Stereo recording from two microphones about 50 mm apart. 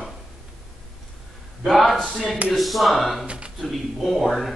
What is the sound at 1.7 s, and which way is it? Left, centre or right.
Speech, centre.